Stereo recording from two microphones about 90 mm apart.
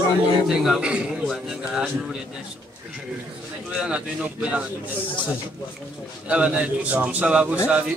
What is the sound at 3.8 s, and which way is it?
Speech, 15° right (ahead or behind).